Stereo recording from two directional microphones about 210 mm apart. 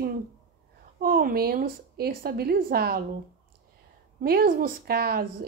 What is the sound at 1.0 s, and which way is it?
A woman's voice, 45° right (ahead or behind).